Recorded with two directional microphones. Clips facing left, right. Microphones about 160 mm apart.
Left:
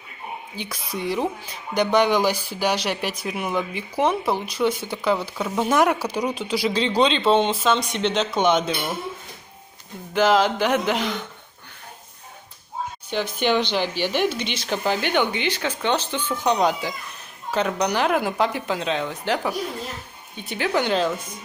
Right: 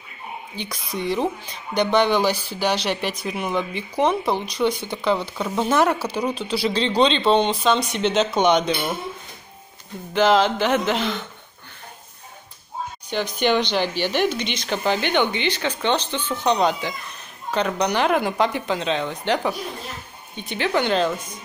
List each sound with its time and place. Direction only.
0.6 s speech: 5° left (ahead or behind)
10.1 s speech: 10° left (ahead or behind)
13.1 s speech: 5° left (ahead or behind)